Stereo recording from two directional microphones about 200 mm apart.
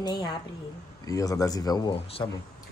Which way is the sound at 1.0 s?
15° left (ahead or behind).